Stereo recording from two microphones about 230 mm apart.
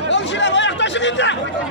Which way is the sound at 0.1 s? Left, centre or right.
Left.